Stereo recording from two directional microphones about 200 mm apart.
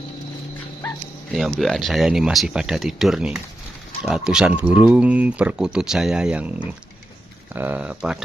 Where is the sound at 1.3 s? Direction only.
Centre (ahead or behind).